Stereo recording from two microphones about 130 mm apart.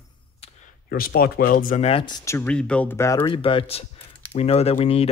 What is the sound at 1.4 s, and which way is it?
Speech, 90° left.